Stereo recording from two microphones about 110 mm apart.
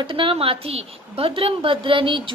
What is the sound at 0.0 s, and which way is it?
A woman's voice, 50° right (ahead or behind).